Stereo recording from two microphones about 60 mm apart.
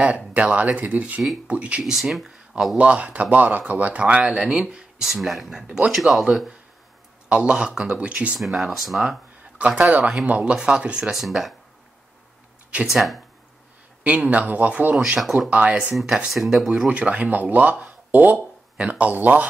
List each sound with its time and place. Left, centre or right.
0.3 s speech: right
1.8 s speech: centre
2.8 s speech: right; by 6.2 s centre
7.2 s speech: centre
8.4 s speech: centre
9.8 s speech: right; by 11.5 s centre
12.8 s speech: centre
14.0 s speech: right
15.1 s speech: centre
15.5 s speech: right
15.9 s speech: centre
16.9 s speech: right